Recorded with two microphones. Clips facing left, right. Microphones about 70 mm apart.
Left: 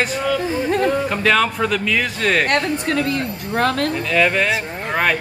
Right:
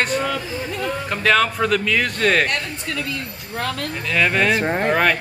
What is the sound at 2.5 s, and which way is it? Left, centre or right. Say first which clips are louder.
Speech: left 7 dB; left.